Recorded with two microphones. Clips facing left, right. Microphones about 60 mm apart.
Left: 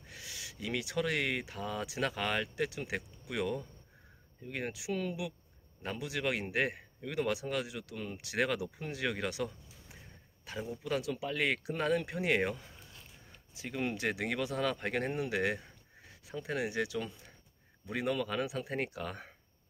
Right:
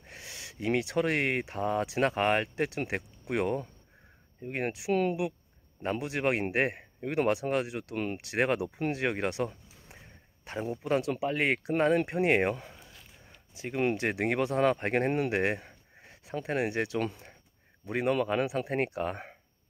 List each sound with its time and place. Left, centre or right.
0.0 s speech: right
13.6 s speech: right